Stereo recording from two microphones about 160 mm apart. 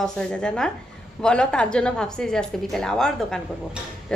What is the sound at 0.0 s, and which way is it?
A woman's voice, 5° left (ahead or behind).